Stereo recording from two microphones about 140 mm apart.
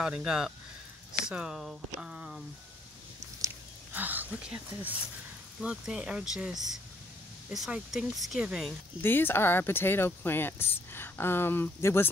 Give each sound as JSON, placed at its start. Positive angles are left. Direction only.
{"t": 0.0, "sound": "speech", "side_deg": -5}
{"t": 3.2, "sound": "whispering", "side_deg": -15}
{"t": 5.6, "sound": "speech", "side_deg": -5}
{"t": 9.0, "sound": "speech", "side_deg": 15}